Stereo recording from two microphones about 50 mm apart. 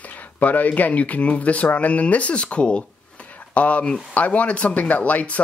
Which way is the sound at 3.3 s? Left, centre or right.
Left.